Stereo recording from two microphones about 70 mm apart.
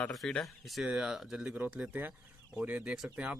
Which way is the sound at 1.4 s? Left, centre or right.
Right.